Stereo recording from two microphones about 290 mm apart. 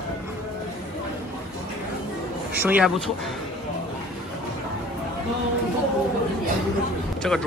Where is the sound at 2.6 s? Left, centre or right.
Centre.